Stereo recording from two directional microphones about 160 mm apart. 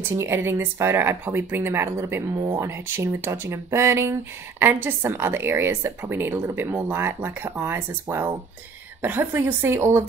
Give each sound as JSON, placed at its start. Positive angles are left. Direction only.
{"t": 0.1, "sound": "a woman's voice", "side_deg": -15}